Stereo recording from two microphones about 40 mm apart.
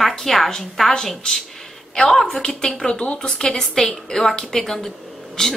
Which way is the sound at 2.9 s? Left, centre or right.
Left.